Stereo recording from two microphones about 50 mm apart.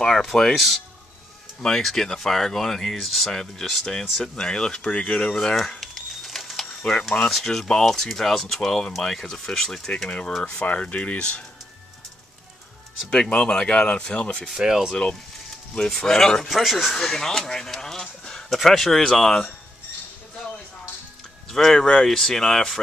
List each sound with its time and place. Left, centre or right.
0.0 s speech: centre
5.8 s a sound: centre
7.2 s speech: centre
10.0 s speech: left
13.1 s speech: centre
14.6 s speech: centre
16.0 s speech: centre
21.5 s speech: centre